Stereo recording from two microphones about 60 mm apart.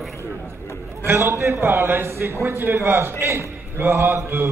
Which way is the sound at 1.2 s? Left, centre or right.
Right.